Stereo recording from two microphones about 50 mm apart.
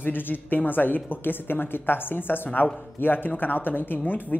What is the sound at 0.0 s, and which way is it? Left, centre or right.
Speech, left.